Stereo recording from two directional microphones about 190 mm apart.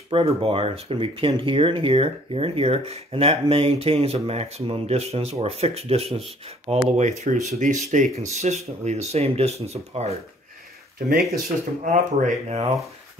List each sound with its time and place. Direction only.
0.1 s speech: 30° right (ahead or behind)
11.1 s speech: 50° right (ahead or behind); by 12.7 s 35° right (ahead or behind)